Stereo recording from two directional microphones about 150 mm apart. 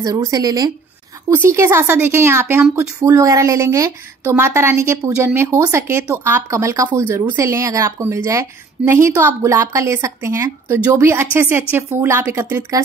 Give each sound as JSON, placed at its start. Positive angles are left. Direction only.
{"t": 0.0, "sound": "speech", "side_deg": -25}